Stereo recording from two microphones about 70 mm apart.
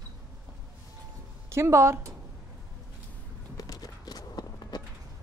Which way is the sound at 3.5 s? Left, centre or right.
Left.